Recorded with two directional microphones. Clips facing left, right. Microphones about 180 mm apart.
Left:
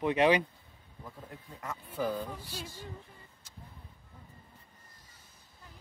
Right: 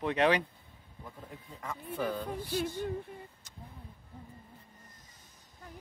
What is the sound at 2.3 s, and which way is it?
Music, 55° right (ahead or behind).